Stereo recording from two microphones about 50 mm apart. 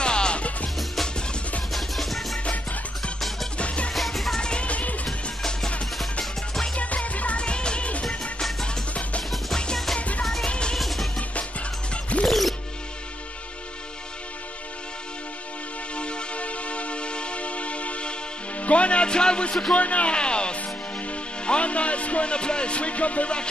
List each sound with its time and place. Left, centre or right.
0.0 s music: centre
1.7 s music: centre
2.4 s music: left
3.2 s music: centre
3.5 s music: left
3.9 s music: centre
4.4 s music: centre
6.7 s music: left
10.8 s music: centre
11.9 s music: left
12.3 s music: centre
16.0 s vehicle horn: left
18.6 s music: left
19.7 s music: left